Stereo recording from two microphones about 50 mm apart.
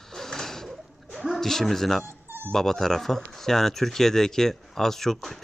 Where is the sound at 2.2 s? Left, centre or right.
Right.